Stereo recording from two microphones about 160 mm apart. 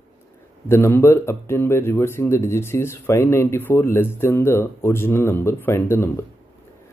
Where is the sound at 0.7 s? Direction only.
15° left (ahead or behind).